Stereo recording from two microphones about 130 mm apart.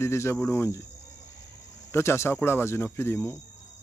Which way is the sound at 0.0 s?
20° left (ahead or behind).